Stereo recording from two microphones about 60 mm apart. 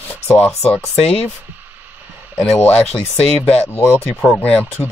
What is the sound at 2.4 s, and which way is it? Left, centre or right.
Speech, left.